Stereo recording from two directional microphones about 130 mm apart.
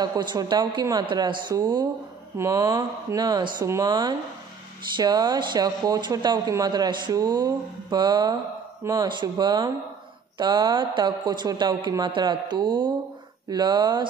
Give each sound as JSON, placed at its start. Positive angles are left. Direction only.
{"t": 0.0, "sound": "speech", "side_deg": -35}